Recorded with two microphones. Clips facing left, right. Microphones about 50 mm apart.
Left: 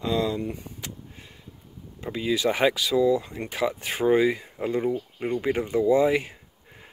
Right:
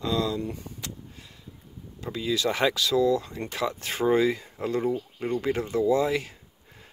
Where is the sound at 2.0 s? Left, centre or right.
Left.